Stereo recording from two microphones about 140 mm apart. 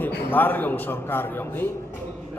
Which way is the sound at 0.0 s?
15° left (ahead or behind).